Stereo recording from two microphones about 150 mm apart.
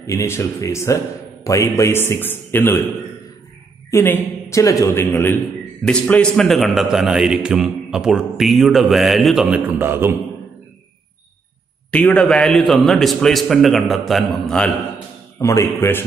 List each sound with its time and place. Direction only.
0.0 s a man's voice: 20° left (ahead or behind)
3.9 s a man's voice: 15° left (ahead or behind); by 9.6 s centre (ahead or behind)
9.8 s a man's voice: 15° right (ahead or behind)
11.9 s a man's voice: 5° left (ahead or behind)
15.3 s speech: 20° left (ahead or behind)